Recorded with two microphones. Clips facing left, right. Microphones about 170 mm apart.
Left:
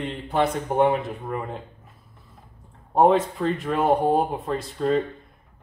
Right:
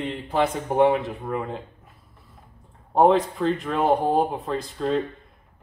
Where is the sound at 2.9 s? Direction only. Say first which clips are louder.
Even; centre (ahead or behind).